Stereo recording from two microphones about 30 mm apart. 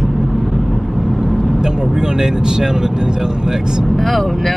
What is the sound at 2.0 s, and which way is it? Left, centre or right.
Speech, right.